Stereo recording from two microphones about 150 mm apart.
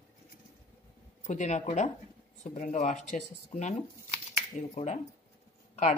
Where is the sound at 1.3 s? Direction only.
50° left (ahead or behind).